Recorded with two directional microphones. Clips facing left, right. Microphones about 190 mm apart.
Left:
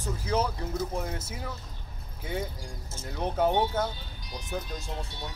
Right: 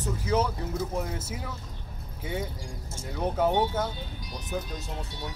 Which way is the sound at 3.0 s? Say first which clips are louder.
Right 1 dB; centre (ahead or behind).